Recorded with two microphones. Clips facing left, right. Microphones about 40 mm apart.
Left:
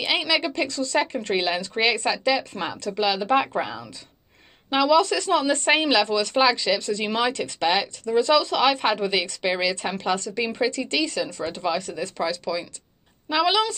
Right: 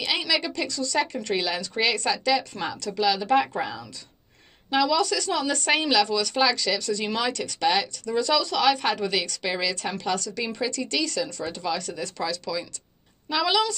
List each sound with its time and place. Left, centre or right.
0.0 s speech: left